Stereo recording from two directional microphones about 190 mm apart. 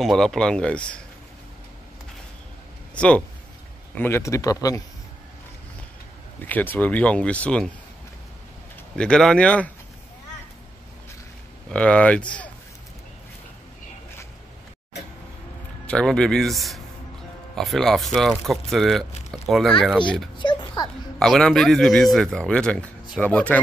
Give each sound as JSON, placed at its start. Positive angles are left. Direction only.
{"t": 0.0, "sound": "speech", "side_deg": 0}
{"t": 2.9, "sound": "a sound", "side_deg": 5}
{"t": 3.9, "sound": "speech", "side_deg": 10}
{"t": 6.4, "sound": "speech", "side_deg": 10}
{"t": 8.9, "sound": "speech", "side_deg": 5}
{"t": 11.7, "sound": "speech", "side_deg": 5}
{"t": 15.9, "sound": "speech", "side_deg": 5}
{"t": 20.3, "sound": "a sound", "side_deg": 25}
{"t": 21.2, "sound": "speech", "side_deg": 5}